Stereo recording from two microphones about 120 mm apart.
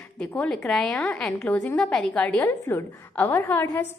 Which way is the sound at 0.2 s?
10° left (ahead or behind).